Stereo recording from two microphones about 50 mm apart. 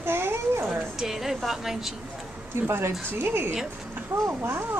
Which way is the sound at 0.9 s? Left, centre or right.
Centre.